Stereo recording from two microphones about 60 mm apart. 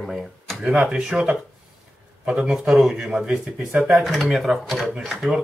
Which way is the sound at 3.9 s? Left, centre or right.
Centre.